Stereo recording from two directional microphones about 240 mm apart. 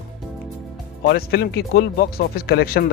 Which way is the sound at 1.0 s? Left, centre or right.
Left.